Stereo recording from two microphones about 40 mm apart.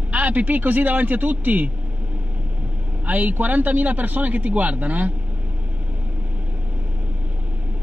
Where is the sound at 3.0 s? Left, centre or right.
Right.